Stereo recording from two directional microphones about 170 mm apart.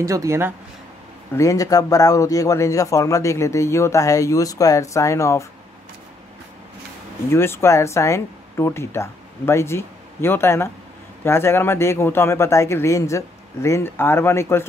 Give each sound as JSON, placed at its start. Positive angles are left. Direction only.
{"t": 0.0, "sound": "speech", "side_deg": -20}
{"t": 1.3, "sound": "speech", "side_deg": 20}
{"t": 7.2, "sound": "speech", "side_deg": 15}